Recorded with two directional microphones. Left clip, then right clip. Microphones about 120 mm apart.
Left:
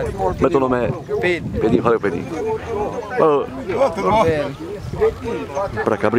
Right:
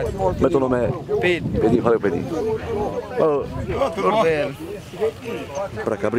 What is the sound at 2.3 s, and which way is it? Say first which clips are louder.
Speech: left 1 dB; 35° left (ahead or behind).